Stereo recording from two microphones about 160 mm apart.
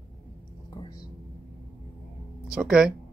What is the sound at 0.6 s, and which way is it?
Whispering, 30° left (ahead or behind).